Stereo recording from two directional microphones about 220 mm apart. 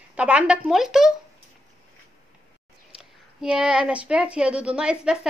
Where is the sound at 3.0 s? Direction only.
5° right (ahead or behind).